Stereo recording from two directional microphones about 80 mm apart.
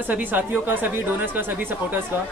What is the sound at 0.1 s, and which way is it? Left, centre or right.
A man's voice, right.